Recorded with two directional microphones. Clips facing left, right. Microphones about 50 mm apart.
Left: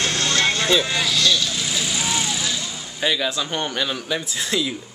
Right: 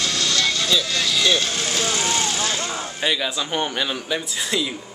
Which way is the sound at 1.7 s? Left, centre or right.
Right.